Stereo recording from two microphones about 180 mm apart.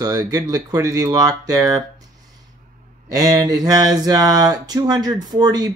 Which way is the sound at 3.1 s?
20° right (ahead or behind).